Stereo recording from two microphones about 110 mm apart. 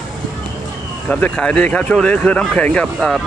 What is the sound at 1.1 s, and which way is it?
Speech, 15° left (ahead or behind).